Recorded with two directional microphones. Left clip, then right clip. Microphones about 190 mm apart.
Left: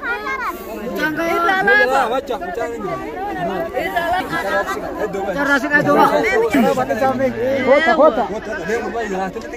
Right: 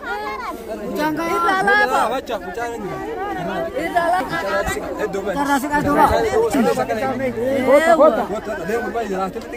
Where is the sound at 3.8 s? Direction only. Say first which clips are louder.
Right 1 dB; 75° right (ahead or behind).